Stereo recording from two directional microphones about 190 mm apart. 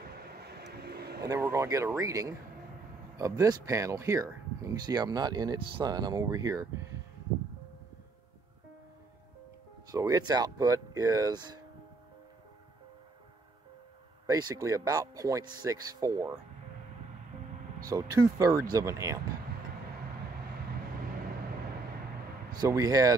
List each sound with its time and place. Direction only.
0.2 s vehicle: 55° right (ahead or behind)
1.2 s speech: 15° right (ahead or behind)
9.8 s speech: 20° right (ahead or behind)
14.2 s speech: 20° right (ahead or behind)
17.8 s speech: 20° right (ahead or behind)
22.5 s speech: 20° right (ahead or behind)